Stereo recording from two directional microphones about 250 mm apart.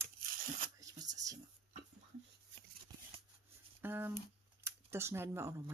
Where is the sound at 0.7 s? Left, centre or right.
Centre.